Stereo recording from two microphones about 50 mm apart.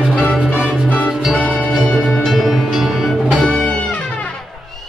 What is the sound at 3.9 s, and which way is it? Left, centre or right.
Music, left.